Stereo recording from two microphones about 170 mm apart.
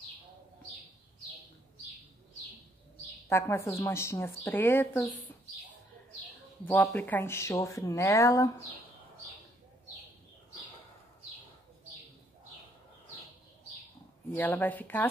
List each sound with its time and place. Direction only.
3.3 s speech: 15° left (ahead or behind)
6.6 s speech: 10° left (ahead or behind)
14.3 s speech: 10° left (ahead or behind)